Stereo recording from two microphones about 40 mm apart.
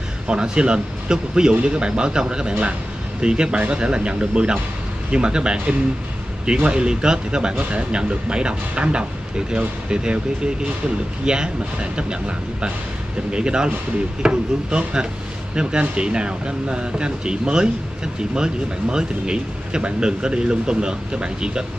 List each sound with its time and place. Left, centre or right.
0.3 s speech: right